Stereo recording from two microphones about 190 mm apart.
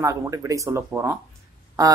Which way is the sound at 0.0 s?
15° right (ahead or behind).